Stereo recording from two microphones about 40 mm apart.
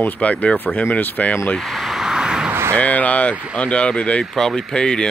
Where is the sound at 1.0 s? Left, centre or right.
Left.